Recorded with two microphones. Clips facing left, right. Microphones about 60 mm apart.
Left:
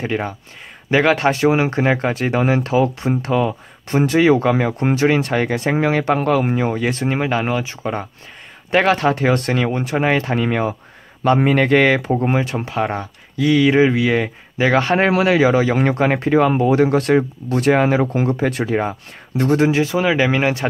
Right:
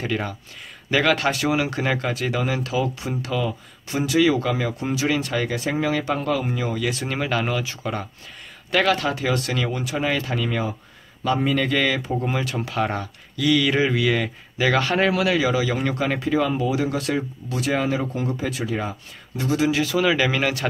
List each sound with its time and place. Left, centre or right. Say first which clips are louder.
0.0 s speech: left 4 dB; left
7.1 s speech: left 5 dB; left
8.7 s speech: left 5 dB; left
19.7 s speech: left 3 dB; left